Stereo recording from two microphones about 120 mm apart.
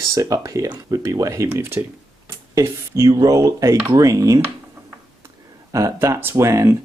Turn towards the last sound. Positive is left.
turn(degrees=-25)  # may be behind; listen again after turning